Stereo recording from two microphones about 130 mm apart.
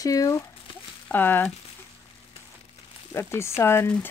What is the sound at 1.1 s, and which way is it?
Speech, 15° left (ahead or behind).